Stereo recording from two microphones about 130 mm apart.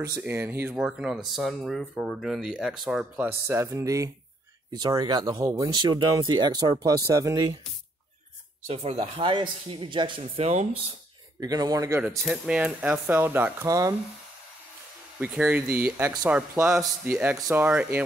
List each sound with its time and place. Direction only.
0.2 s speech: 20° right (ahead or behind)
3.4 s speech: 20° right (ahead or behind)
8.6 s speech: 50° right (ahead or behind)
11.3 s speech: 30° right (ahead or behind)
12.2 s speech: 5° right (ahead or behind)
13.7 s speech: 25° right (ahead or behind)
15.1 s speech: 10° right (ahead or behind)